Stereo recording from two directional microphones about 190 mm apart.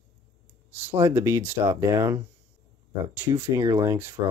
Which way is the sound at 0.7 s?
10° right (ahead or behind).